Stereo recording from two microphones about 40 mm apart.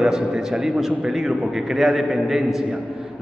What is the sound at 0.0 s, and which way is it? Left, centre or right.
A man's voice, centre.